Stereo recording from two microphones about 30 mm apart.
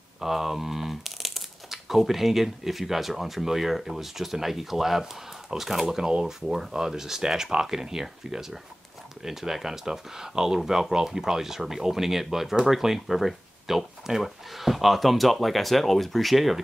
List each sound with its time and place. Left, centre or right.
0.2 s speech: centre